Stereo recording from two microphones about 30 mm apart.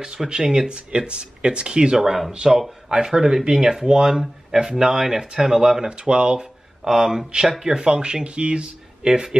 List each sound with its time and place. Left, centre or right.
0.4 s speech: centre
0.7 s speech: right
2.0 s speech: centre
2.3 s speech: right
4.1 s speech: centre
5.9 s speech: right
6.8 s speech: centre
7.6 s speech: right
9.0 s speech: right